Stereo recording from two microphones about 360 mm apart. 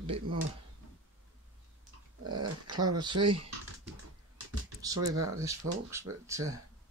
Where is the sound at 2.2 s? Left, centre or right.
Right.